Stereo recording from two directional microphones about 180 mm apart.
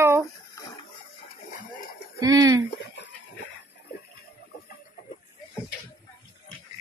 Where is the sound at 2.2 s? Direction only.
20° right (ahead or behind).